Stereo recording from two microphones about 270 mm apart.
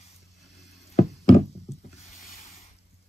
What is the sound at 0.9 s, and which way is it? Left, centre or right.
Wood, left.